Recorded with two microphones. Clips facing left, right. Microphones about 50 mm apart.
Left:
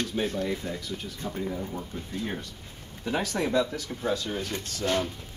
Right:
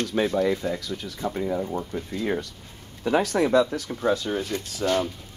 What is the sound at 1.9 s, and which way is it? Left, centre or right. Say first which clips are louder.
Speech: right 6 dB; right.